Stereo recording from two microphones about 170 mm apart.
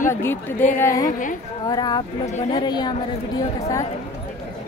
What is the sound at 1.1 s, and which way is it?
Speech, 50° left (ahead or behind).